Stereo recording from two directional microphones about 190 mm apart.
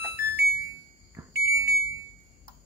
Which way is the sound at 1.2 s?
15° right (ahead or behind).